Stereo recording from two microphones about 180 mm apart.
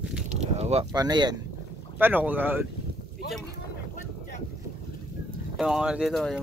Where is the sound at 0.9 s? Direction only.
20° right (ahead or behind).